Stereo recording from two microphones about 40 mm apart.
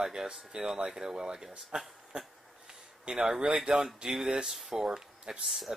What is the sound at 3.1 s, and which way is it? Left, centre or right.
Speech, right.